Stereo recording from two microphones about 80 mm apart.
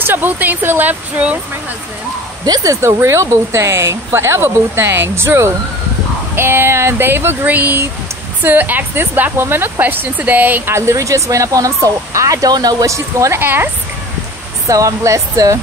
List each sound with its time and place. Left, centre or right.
0.0 s speech: right
2.4 s speech: right
13.4 s speech: right
14.7 s speech: right